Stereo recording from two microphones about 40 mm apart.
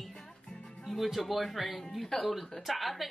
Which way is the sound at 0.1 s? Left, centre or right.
Centre.